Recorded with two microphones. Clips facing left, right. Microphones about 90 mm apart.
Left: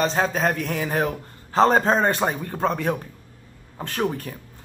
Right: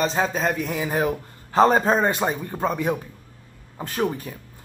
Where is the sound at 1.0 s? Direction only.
15° right (ahead or behind).